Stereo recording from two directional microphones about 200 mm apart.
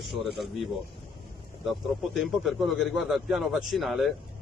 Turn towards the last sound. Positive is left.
turn(degrees=0)  # may be behind; listen again after turning